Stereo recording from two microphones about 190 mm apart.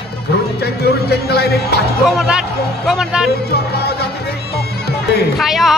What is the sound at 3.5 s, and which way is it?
Music, 55° left (ahead or behind).